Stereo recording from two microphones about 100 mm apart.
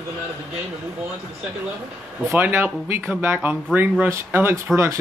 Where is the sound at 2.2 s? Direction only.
20° right (ahead or behind).